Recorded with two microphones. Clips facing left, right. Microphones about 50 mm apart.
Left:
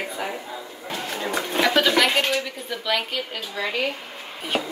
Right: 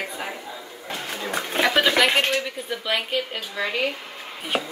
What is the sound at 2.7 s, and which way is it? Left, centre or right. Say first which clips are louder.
A woman's voice: left 2 dB; centre.